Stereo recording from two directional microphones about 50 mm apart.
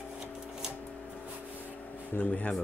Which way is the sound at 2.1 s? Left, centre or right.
Left.